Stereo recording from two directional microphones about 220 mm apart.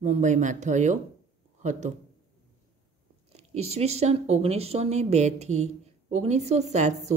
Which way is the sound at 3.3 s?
30° right (ahead or behind).